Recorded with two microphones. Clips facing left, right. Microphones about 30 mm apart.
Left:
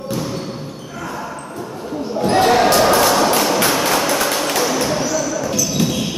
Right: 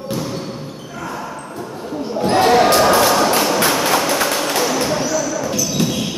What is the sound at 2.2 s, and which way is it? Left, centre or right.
Basketball bounce, centre.